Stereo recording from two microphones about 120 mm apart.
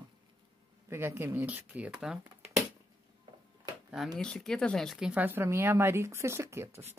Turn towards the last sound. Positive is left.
turn(degrees=-20)  # may be behind; listen again after turning